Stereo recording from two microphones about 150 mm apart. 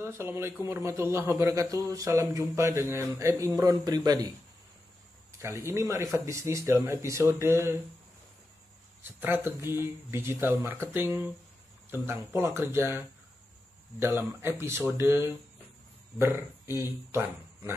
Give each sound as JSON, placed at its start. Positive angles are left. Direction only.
{"t": 0.0, "sound": "speech", "side_deg": -15}
{"t": 5.4, "sound": "speech", "side_deg": -15}
{"t": 9.2, "sound": "speech", "side_deg": -15}
{"t": 16.7, "sound": "speech", "side_deg": -15}